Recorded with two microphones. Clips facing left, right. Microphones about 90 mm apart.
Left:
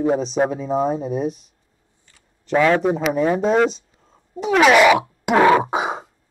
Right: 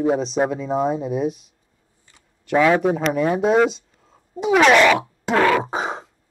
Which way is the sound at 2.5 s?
5° right (ahead or behind).